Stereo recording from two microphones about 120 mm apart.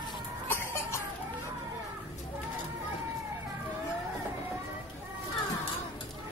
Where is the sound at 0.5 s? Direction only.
20° left (ahead or behind).